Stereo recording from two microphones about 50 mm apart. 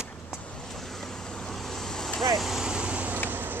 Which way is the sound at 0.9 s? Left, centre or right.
Centre.